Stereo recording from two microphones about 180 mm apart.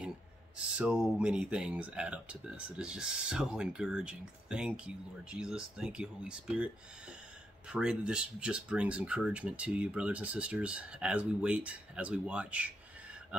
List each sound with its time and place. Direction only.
0.7 s speech: 5° right (ahead or behind)